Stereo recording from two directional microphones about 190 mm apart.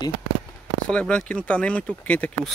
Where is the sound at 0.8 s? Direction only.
5° left (ahead or behind).